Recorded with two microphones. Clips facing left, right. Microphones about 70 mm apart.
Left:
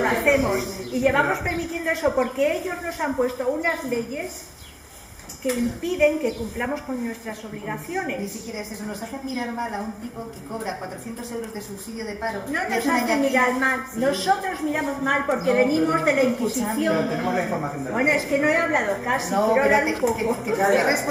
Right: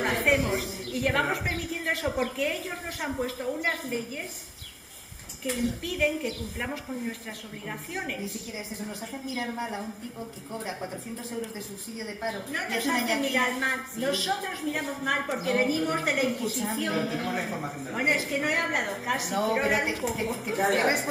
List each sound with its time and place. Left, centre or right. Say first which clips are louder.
0.0 s a woman's voice: left 5 dB; centre
3.4 s a woman's voice: left 6 dB; centre
5.4 s a woman's voice: left 6 dB; centre
9.5 s a woman's voice: left 5 dB; left
12.0 s a woman's voice: left 5 dB; centre
15.0 s a woman's voice: left 7 dB; left
16.3 s a woman's voice: left 6 dB; centre
17.8 s a woman's voice: left 5 dB; left; by 21.1 s centre